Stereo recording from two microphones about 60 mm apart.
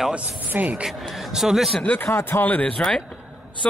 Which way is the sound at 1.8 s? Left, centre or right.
Left.